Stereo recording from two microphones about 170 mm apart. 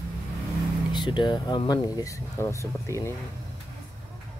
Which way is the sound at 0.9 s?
25° left (ahead or behind).